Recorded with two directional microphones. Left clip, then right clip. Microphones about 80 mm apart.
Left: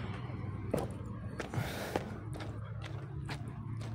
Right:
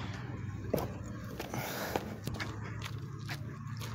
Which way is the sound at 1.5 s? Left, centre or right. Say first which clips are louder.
Right 4 dB; left.